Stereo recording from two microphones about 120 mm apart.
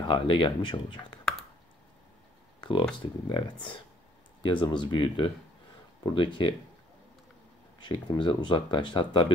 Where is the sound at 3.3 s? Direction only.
40° left (ahead or behind).